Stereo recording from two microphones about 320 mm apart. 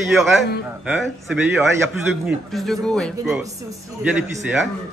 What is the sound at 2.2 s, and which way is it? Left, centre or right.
Speech, centre.